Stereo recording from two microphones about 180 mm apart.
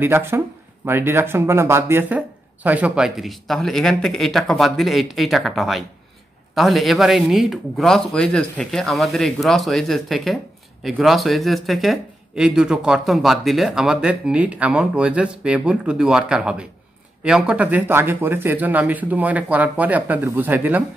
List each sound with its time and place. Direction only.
0.0 s a man's voice: 15° right (ahead or behind)